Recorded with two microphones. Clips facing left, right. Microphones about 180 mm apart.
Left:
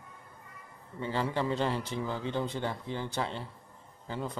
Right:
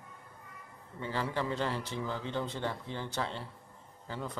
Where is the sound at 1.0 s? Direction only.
20° left (ahead or behind).